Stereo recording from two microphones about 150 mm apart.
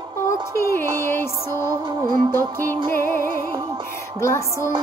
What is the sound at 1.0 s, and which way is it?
Music, 15° left (ahead or behind).